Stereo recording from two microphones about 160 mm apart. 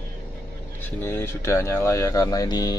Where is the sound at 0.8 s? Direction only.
10° left (ahead or behind).